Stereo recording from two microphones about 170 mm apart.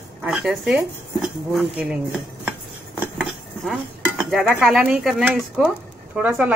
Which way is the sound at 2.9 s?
10° right (ahead or behind).